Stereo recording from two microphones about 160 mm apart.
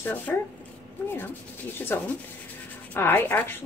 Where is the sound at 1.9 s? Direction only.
15° left (ahead or behind).